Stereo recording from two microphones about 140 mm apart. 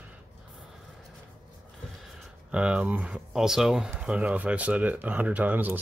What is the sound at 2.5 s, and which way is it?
Speech, 10° right (ahead or behind).